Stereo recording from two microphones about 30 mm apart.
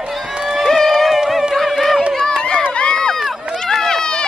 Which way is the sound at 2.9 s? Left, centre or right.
Left.